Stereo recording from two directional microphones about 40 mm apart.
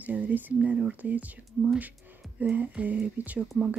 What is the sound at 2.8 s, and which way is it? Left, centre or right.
Speech, right.